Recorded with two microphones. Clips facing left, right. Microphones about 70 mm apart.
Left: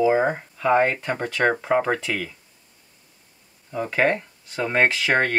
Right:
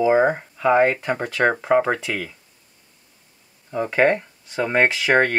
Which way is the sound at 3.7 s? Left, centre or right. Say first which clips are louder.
Right 3 dB; centre.